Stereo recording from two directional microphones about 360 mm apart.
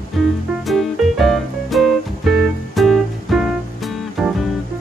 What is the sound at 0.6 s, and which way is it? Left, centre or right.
Music, centre.